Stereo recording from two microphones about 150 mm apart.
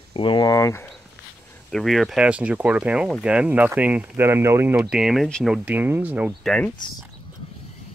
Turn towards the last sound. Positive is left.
turn(degrees=5)  # may be behind; listen again after turning